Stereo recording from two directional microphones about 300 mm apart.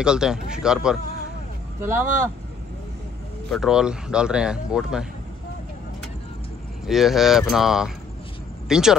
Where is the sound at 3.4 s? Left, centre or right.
Centre.